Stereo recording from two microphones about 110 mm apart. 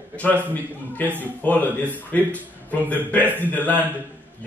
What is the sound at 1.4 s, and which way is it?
Speech, 15° left (ahead or behind).